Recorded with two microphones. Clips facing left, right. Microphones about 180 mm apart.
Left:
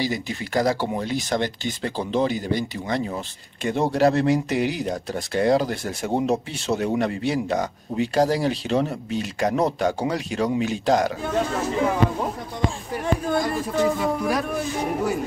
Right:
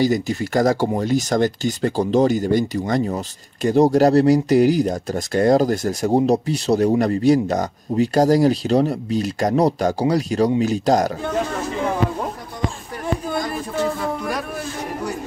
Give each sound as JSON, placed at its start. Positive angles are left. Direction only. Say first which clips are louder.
{"t": 0.0, "sound": "speech", "louder": "right 7 dB", "side_deg": -45}
{"t": 13.7, "sound": "music", "louder": "left 1 dB", "side_deg": 5}